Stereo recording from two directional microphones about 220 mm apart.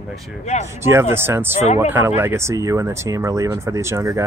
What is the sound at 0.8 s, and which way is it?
Speech, 10° right (ahead or behind).